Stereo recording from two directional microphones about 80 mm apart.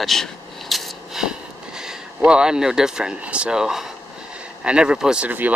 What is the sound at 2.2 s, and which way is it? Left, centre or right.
Speech, centre.